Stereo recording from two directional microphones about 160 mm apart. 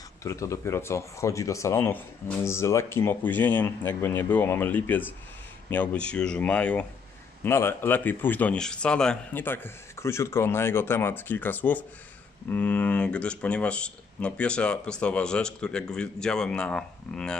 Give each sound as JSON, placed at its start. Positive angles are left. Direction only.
{"t": 0.2, "sound": "speech", "side_deg": 20}